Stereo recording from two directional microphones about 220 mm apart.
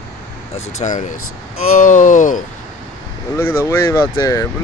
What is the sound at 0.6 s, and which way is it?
Speech, 30° left (ahead or behind).